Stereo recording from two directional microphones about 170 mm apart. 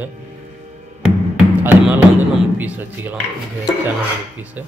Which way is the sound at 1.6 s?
10° right (ahead or behind).